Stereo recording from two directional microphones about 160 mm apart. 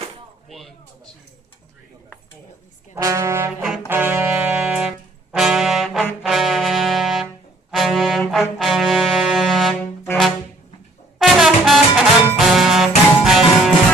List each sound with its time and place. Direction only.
0.5 s a sound: centre (ahead or behind)
2.9 s brass instrument: 20° right (ahead or behind); by 10.3 s 5° left (ahead or behind)
11.1 s music: centre (ahead or behind)